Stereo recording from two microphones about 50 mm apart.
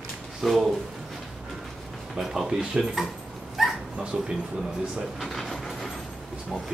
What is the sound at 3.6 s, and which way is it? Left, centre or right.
Dog, centre.